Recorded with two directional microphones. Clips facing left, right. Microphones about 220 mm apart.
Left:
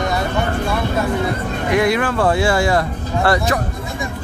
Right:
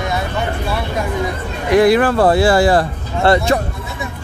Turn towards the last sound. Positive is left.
turn(degrees=-25)  # may be behind; listen again after turning